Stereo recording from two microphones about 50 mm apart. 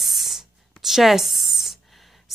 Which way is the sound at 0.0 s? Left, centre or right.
Centre.